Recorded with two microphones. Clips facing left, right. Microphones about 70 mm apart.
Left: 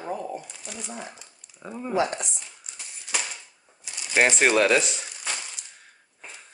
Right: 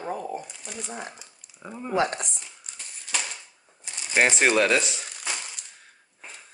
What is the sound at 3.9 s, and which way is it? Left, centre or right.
Crumpling, centre.